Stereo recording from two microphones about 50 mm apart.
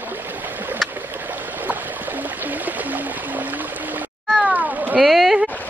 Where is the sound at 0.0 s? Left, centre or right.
Right.